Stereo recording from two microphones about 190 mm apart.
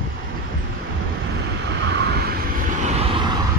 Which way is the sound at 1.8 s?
60° right (ahead or behind).